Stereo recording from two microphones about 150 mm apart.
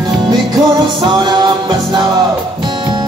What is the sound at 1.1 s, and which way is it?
Music, 30° right (ahead or behind).